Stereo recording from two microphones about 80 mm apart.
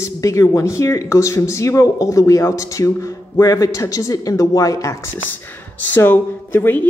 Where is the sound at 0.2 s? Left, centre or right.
Left.